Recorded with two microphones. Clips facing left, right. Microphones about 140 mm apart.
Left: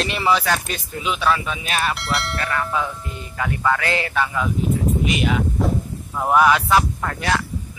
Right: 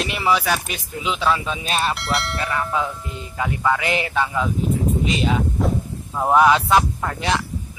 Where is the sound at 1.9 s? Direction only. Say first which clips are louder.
Right 1 dB; centre (ahead or behind).